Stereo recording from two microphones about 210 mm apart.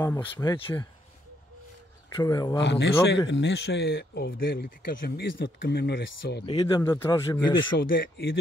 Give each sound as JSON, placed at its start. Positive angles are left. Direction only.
{"t": 0.0, "sound": "speech", "side_deg": 15}
{"t": 2.1, "sound": "speech", "side_deg": 15}
{"t": 2.6, "sound": "speech", "side_deg": 55}
{"t": 6.4, "sound": "speech", "side_deg": 25}
{"t": 6.8, "sound": "speech", "side_deg": 10}
{"t": 7.9, "sound": "speech", "side_deg": 45}